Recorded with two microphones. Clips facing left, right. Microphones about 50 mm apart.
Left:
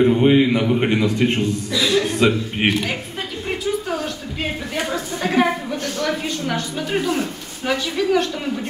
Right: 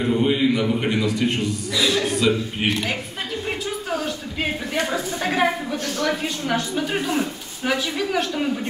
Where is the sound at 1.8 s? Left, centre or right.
Centre.